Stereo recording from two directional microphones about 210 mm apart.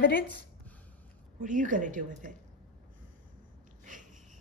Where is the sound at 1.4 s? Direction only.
40° right (ahead or behind).